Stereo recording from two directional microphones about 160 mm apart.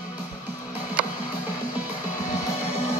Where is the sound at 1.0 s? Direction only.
5° right (ahead or behind).